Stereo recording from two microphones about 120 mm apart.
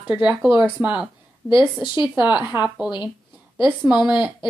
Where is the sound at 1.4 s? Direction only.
40° left (ahead or behind).